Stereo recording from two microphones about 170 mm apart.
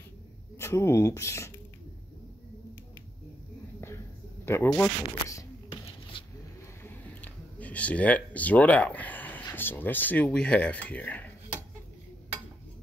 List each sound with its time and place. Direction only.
0.6 s speech: 15° left (ahead or behind)
4.5 s speech: 15° left (ahead or behind)
6.8 s speech: 10° left (ahead or behind)